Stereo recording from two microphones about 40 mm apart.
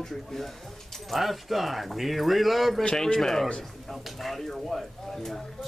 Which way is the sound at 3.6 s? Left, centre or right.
Centre.